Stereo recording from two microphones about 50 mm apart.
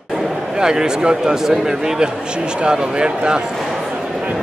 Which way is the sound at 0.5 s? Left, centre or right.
Centre.